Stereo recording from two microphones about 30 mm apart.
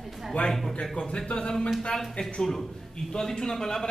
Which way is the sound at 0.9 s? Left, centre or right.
Left.